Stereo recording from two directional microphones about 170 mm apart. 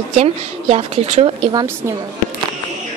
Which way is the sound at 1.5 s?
25° right (ahead or behind).